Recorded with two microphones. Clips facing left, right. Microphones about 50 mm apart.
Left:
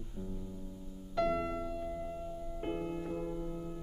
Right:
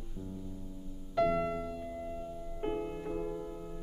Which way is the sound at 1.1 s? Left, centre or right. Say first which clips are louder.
Right 3 dB; centre.